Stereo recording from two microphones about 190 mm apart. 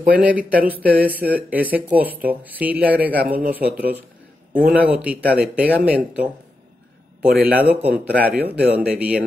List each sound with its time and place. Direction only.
0.1 s speech: 10° right (ahead or behind)
4.7 s speech: 5° right (ahead or behind)
7.2 s a man's voice: 55° right (ahead or behind)
7.8 s speech: 10° right (ahead or behind)